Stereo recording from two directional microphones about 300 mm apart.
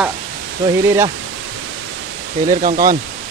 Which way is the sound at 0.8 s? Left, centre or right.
Centre.